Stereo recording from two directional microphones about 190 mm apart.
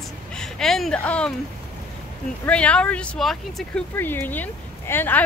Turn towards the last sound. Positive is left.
turn(degrees=10)  # may be behind; listen again after turning